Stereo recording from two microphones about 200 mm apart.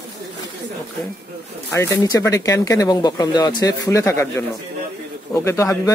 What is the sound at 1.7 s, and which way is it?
Speech, 15° left (ahead or behind).